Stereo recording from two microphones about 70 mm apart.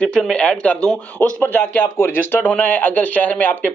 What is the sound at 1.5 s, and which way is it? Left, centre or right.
Speech, left.